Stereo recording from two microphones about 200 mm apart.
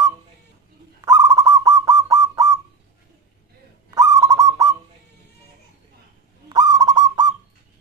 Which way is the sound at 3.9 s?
15° right (ahead or behind).